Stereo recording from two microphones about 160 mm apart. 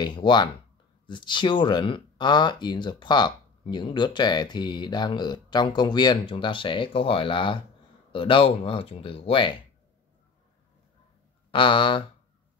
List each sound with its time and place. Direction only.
0.0 s speech: 30° left (ahead or behind)
11.5 s speech: 30° left (ahead or behind)